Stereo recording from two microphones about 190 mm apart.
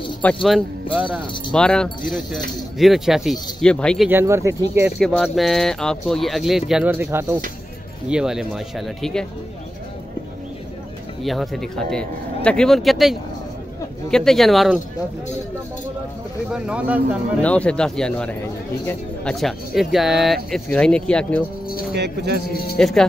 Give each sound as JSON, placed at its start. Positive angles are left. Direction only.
{"t": 0.2, "sound": "speech", "side_deg": 5}
{"t": 1.5, "sound": "speech", "side_deg": 5}
{"t": 4.1, "sound": "speech", "side_deg": -15}
{"t": 4.9, "sound": "speech", "side_deg": 0}
{"t": 11.2, "sound": "speech", "side_deg": 0}
{"t": 16.4, "sound": "speech", "side_deg": -5}
{"t": 17.4, "sound": "speech", "side_deg": 5}
{"t": 21.9, "sound": "speech", "side_deg": -60}
{"t": 22.5, "sound": "speech", "side_deg": 55}
{"t": 22.8, "sound": "speech", "side_deg": 5}